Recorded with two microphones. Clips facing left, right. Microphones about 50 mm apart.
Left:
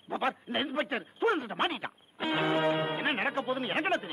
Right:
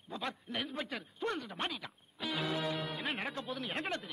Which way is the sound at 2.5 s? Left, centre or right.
Left.